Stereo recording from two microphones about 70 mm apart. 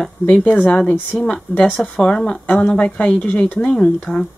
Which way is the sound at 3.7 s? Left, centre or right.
Centre.